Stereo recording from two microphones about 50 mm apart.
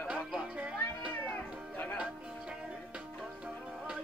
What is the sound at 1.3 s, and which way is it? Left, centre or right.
Music, left.